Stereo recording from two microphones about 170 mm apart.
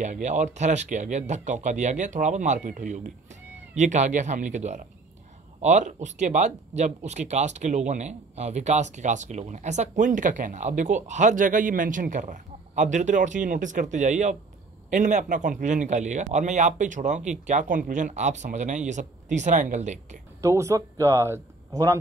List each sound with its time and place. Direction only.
0.0 s speech: 45° right (ahead or behind)
20.4 s speech: 15° right (ahead or behind)